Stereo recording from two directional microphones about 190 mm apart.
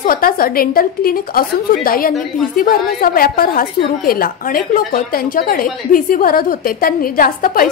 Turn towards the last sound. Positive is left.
turn(degrees=50)  # may be behind; listen again after turning